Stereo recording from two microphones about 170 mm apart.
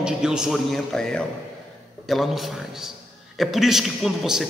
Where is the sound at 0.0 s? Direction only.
5° right (ahead or behind).